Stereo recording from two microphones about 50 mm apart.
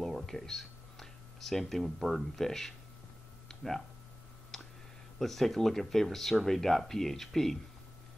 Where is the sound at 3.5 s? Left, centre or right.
Centre.